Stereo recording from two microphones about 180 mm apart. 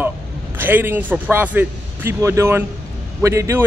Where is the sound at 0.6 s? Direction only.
10° right (ahead or behind).